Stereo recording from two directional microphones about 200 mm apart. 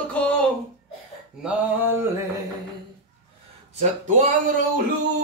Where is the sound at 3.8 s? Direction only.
40° right (ahead or behind).